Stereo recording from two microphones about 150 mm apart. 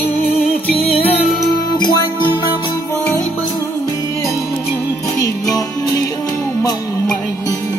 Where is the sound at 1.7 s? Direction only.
30° left (ahead or behind).